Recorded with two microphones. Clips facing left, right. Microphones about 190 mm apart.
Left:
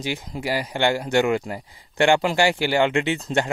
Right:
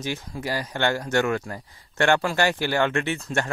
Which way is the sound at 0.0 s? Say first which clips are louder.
Left 2 dB; 15° left (ahead or behind).